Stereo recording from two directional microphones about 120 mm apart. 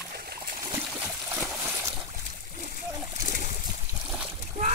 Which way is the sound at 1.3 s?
20° right (ahead or behind).